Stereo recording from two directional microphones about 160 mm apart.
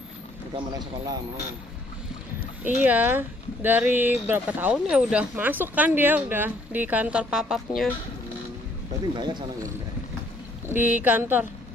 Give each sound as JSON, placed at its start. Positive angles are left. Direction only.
{"t": 2.6, "sound": "speech", "side_deg": -10}
{"t": 9.1, "sound": "speech", "side_deg": -30}
{"t": 10.7, "sound": "speech", "side_deg": -10}